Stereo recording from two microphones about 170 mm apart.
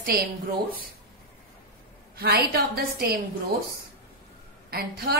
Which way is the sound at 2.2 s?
65° right (ahead or behind).